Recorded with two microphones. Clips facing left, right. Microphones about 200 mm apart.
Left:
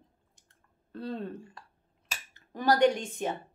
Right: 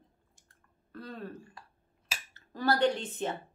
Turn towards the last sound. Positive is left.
turn(degrees=10)  # may be behind; listen again after turning